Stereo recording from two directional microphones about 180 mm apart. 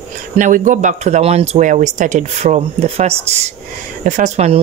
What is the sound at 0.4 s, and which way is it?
A woman's voice, 45° right (ahead or behind).